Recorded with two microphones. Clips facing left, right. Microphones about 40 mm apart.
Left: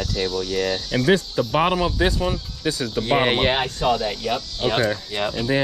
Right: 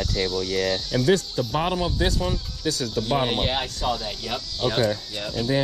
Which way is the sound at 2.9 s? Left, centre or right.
Left.